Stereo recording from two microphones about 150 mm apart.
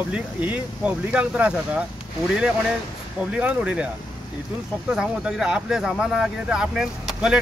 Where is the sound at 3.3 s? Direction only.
10° right (ahead or behind).